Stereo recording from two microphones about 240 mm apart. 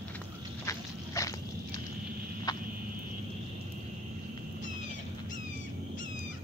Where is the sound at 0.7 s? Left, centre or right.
Centre.